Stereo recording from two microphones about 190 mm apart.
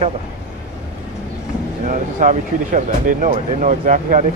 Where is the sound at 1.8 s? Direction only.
45° right (ahead or behind).